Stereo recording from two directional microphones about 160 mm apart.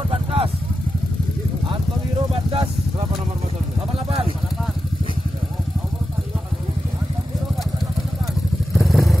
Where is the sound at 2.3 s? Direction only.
35° right (ahead or behind).